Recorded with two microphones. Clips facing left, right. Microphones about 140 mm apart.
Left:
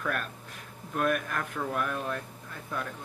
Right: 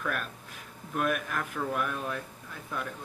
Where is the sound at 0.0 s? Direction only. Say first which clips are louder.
Left 1 dB; centre (ahead or behind).